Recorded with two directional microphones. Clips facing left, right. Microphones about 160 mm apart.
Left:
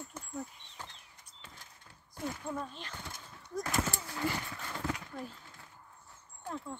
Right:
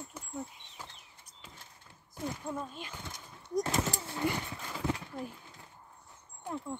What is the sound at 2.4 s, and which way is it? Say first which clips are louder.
Speech: right 1 dB; 10° right (ahead or behind).